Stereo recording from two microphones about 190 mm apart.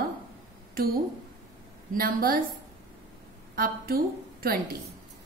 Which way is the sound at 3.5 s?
50° right (ahead or behind).